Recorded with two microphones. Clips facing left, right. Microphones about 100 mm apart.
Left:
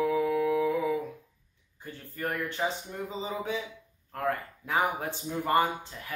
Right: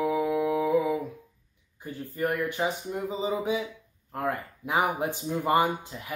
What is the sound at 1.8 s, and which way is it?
Speech, 15° right (ahead or behind).